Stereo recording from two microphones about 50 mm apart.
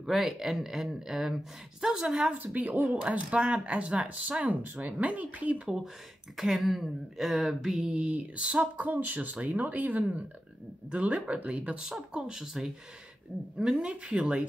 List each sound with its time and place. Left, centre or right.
0.0 s speech: centre
2.3 s speech: right
6.3 s speech: centre
7.8 s speech: right
8.8 s speech: right
12.1 s speech: centre
13.7 s speech: centre